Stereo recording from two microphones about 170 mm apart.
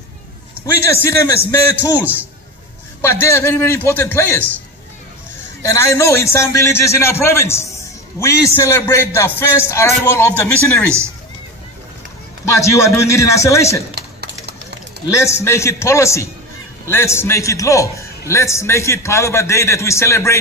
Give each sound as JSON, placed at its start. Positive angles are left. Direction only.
{"t": 0.7, "sound": "a man's voice", "side_deg": 15}
{"t": 3.0, "sound": "a man's voice", "side_deg": 15}
{"t": 5.6, "sound": "a man's voice", "side_deg": 15}
{"t": 12.5, "sound": "a man's voice", "side_deg": 15}
{"t": 13.9, "sound": "typing", "side_deg": -75}
{"t": 15.0, "sound": "a man's voice", "side_deg": 15}